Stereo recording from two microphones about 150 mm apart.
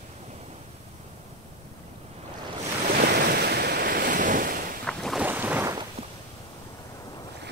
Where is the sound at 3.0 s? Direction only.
90° right; by 4.5 s 65° right (ahead or behind).